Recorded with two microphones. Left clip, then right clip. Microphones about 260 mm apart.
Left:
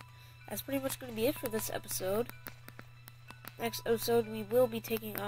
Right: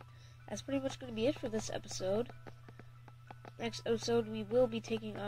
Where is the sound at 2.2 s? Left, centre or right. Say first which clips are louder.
Left 4 dB; left.